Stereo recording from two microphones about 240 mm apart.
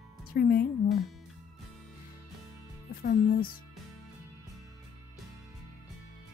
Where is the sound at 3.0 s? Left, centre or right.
Left.